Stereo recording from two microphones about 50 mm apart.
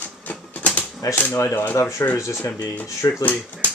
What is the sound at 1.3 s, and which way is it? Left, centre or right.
Speech, left.